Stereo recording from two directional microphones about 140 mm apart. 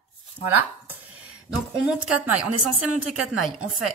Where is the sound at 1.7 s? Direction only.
5° right (ahead or behind).